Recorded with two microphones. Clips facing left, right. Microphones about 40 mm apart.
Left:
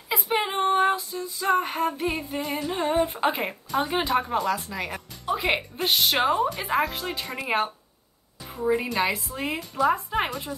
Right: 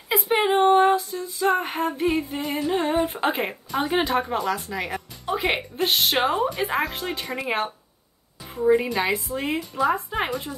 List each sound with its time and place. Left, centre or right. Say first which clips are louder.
0.3 s a sound: right 6 dB; centre
0.8 s music: right 4 dB; centre
1.5 s female singing: left 3 dB; centre
4.2 s speech: even; centre
5.8 s female singing: right 3 dB; centre
6.2 s speech: right 1 dB; centre
9.6 s female singing: left 2 dB; centre